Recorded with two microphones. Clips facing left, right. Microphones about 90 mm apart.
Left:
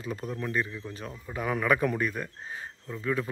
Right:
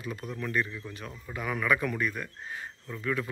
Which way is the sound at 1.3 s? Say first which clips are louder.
Left 2 dB; 35° left (ahead or behind).